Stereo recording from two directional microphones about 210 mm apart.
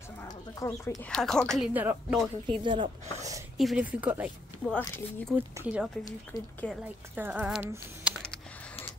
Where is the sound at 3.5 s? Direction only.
Centre (ahead or behind).